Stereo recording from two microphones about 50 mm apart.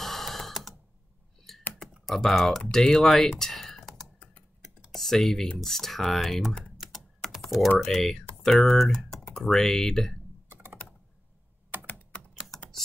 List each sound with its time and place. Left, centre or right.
0.0 s a sound: centre
1.7 s computer keyboard: centre
2.7 s speech: centre
4.2 s tick-tock: left
4.9 s speech: centre
6.9 s typing: centre
7.8 s speech: centre
10.5 s typing: right
11.7 s computer keyboard: right